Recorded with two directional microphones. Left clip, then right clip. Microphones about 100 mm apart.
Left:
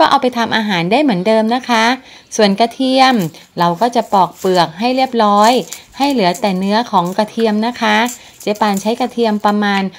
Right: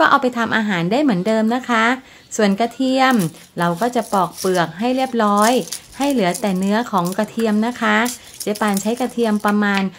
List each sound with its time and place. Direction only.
0.0 s speech: 15° left (ahead or behind)